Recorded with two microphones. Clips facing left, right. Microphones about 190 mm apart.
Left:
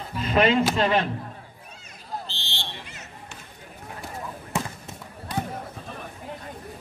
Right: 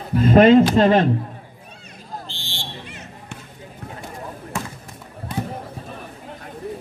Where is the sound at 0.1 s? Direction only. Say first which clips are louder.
Right 10 dB; 50° right (ahead or behind).